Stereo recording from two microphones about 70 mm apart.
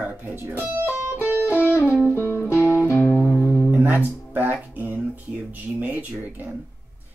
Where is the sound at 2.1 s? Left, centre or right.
Left.